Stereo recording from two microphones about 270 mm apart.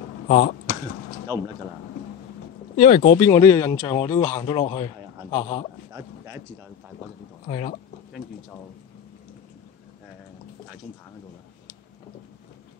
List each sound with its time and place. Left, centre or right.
0.3 s a sound: left
2.8 s speech: left
3.3 s a man's voice: centre
5.9 s speech: centre
7.4 s speech: left